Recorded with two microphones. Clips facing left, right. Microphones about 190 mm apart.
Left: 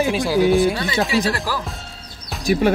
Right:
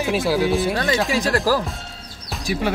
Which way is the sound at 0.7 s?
45° right (ahead or behind).